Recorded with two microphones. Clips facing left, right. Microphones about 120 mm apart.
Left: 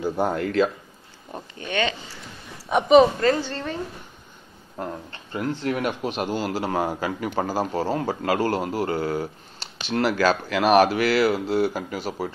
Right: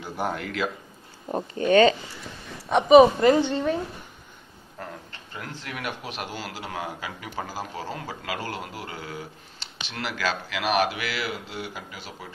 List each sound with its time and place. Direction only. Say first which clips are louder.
0.0 s speech: left 6 dB; 30° left (ahead or behind)
1.3 s speech: right 10 dB; 35° right (ahead or behind)
2.7 s a woman's voice: right 1 dB; 5° right (ahead or behind)
3.2 s a woman's voice: right 3 dB; 20° right (ahead or behind)
4.7 s speech: left 7 dB; 30° left (ahead or behind)